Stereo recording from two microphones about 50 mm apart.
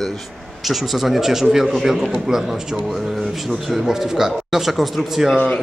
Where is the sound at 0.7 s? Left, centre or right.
Centre.